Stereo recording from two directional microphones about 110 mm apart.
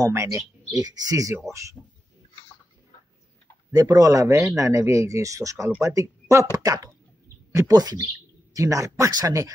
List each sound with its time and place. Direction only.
0.0 s speech: 25° right (ahead or behind)
3.7 s speech: 30° right (ahead or behind)